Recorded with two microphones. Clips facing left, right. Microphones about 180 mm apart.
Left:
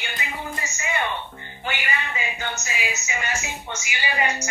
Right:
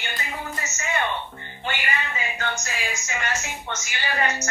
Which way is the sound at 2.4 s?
5° left (ahead or behind).